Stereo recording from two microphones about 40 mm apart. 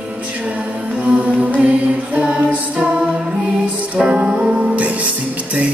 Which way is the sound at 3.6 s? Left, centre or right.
Right.